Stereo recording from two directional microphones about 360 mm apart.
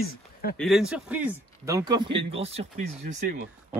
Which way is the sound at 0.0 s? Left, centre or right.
Left.